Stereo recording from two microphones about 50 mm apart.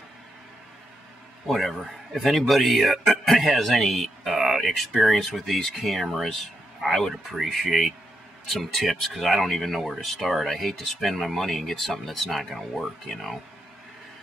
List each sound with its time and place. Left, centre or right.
1.5 s speech: centre
7.7 s speech: centre
8.5 s speech: centre